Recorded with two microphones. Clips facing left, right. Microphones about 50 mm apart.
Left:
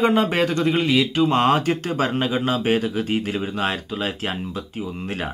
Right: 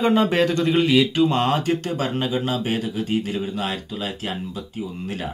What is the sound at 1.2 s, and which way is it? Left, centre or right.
Speech, left.